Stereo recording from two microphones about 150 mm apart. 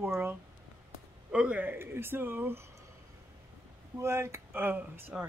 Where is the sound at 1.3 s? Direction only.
10° right (ahead or behind).